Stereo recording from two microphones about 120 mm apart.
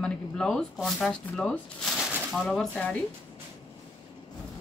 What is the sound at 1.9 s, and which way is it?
Speech, 5° right (ahead or behind).